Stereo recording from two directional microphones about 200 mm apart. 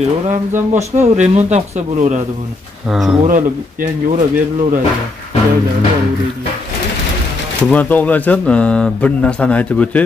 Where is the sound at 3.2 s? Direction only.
40° right (ahead or behind).